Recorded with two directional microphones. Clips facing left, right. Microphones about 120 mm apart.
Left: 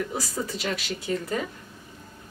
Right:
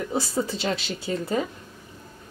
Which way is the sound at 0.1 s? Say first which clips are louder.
Right 5 dB; 25° right (ahead or behind).